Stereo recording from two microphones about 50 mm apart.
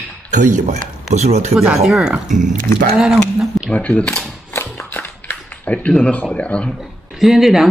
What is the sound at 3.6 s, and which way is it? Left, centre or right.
Speech, left.